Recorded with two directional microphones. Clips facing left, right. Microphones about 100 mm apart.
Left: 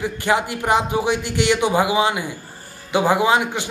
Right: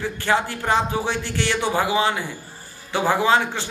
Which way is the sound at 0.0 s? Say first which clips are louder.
Left 2 dB; 15° left (ahead or behind).